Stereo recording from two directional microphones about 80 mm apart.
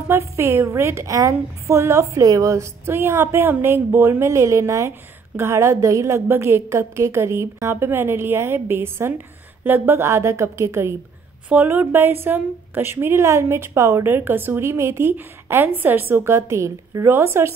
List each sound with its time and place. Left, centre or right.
0.1 s a woman's voice: right
11.4 s a woman's voice: right